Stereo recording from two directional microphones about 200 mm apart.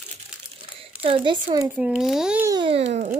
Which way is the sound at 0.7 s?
25° right (ahead or behind).